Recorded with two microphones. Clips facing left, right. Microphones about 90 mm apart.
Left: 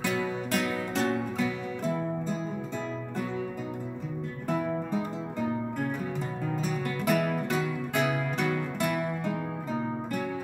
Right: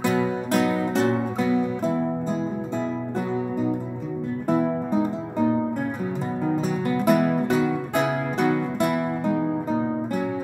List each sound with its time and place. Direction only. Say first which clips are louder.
0.0 s music: right 7 dB; 30° right (ahead or behind)
4.6 s music: right 7 dB; 30° right (ahead or behind)